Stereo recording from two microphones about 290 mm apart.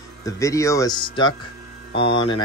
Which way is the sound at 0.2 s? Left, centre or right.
Centre.